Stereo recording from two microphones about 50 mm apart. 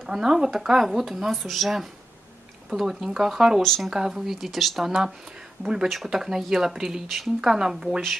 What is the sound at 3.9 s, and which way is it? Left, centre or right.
Speech, centre.